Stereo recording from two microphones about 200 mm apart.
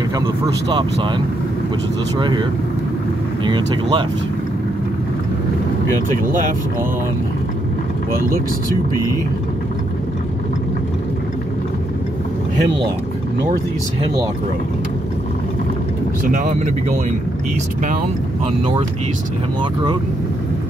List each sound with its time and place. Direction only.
0.7 s speech: 25° right (ahead or behind)
3.4 s speech: 25° right (ahead or behind)
16.3 s speech: 35° right (ahead or behind)
19.6 s speech: 20° right (ahead or behind)